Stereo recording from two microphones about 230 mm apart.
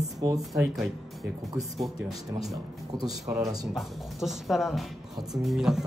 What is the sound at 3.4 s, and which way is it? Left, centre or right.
Speech, centre.